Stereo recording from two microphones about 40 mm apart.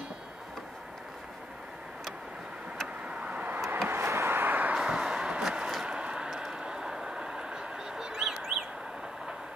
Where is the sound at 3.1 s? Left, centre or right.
Right.